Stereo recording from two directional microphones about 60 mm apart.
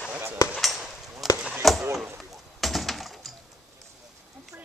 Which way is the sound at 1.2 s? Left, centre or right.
Centre.